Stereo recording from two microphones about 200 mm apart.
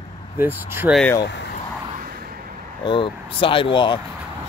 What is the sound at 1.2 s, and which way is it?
Speech, 60° left (ahead or behind).